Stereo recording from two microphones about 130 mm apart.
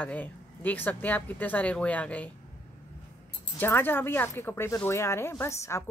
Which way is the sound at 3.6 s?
15° left (ahead or behind).